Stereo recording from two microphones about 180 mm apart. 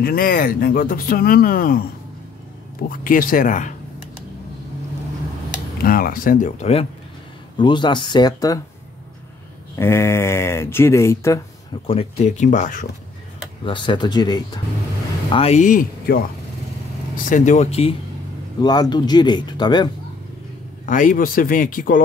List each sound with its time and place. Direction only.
0.0 s speech: 55° left (ahead or behind)
2.9 s speech: 50° left (ahead or behind)
5.8 s speech: 55° left (ahead or behind); by 6.9 s 35° left (ahead or behind)
7.5 s speech: 25° left (ahead or behind)
9.8 s speech: 15° left (ahead or behind)
11.7 s speech: 35° left (ahead or behind)
13.7 s speech: 25° left (ahead or behind)
15.3 s speech: 35° left (ahead or behind)
18.6 s speech: 25° left (ahead or behind)
20.8 s speech: 45° left (ahead or behind)